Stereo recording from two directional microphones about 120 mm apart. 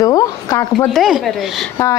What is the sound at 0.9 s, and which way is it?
Speech, centre (ahead or behind).